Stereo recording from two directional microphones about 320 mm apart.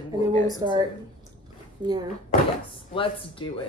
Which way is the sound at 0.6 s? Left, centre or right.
Centre.